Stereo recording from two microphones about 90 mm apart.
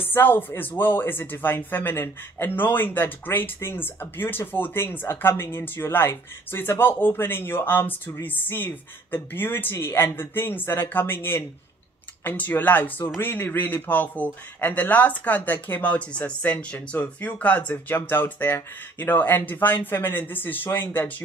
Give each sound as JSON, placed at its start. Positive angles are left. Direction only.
{"t": 0.1, "sound": "speech", "side_deg": 20}